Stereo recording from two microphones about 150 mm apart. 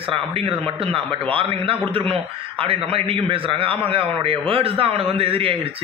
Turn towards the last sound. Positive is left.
turn(degrees=-40)  # may be behind; listen again after turning